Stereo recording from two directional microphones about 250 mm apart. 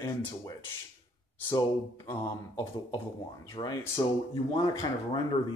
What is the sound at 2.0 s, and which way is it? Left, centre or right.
Speech, centre.